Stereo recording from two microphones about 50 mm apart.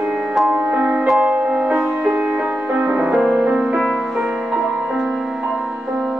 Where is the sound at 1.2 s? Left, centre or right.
Right.